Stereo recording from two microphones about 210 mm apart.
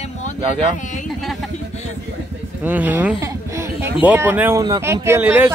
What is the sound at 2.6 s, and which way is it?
Speech, 10° right (ahead or behind).